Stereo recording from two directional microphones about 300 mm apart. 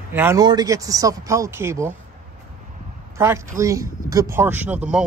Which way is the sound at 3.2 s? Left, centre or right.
Centre.